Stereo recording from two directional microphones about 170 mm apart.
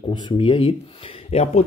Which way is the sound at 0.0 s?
25° left (ahead or behind).